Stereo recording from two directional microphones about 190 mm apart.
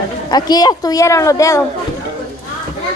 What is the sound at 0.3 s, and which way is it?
A woman's voice, 20° left (ahead or behind).